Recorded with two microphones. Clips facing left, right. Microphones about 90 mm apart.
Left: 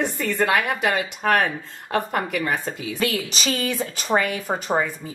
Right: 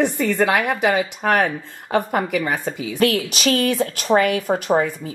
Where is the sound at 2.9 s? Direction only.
65° right (ahead or behind).